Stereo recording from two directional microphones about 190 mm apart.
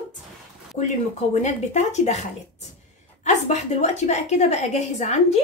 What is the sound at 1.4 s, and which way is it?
Speech, 40° left (ahead or behind).